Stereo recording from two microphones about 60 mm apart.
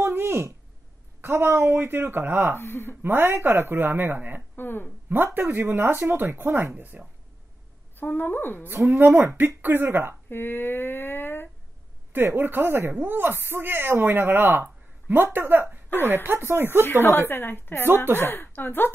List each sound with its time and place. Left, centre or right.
0.0 s a sound: right
1.2 s speech: right
2.6 s a woman's voice: left
3.0 s speech: right
4.6 s a woman's voice: left
5.1 s speech: right
7.0 s speech: right
7.9 s a woman's voice: left
8.9 s speech: right
10.3 s a sound: left
12.4 s speech: right
16.8 s a woman's voice: left